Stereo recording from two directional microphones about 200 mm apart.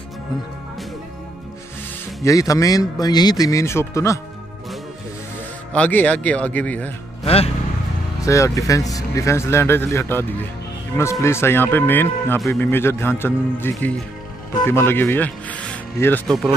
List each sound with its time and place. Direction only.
2.2 s speech: 15° left (ahead or behind)
5.7 s speech: 5° left (ahead or behind)
7.2 s speech: 30° left (ahead or behind)
8.2 s speech: 15° left (ahead or behind)